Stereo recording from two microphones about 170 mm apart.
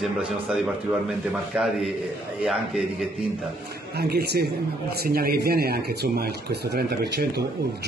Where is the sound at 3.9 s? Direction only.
70° right (ahead or behind).